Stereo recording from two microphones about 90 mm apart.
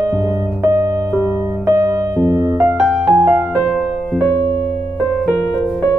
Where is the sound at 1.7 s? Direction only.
35° right (ahead or behind).